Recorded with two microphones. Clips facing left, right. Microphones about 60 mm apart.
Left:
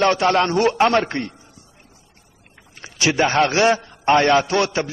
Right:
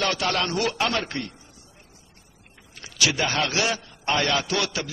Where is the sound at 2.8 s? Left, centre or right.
Left.